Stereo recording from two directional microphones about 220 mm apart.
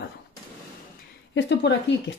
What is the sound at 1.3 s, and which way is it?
Speech, 50° left (ahead or behind).